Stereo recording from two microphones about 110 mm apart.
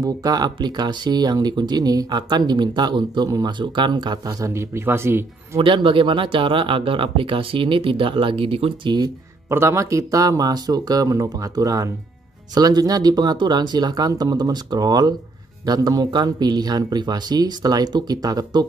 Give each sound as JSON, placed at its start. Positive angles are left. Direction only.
{"t": 0.0, "sound": "speech", "side_deg": -35}
{"t": 5.6, "sound": "speech", "side_deg": -50}
{"t": 9.5, "sound": "speech", "side_deg": -25}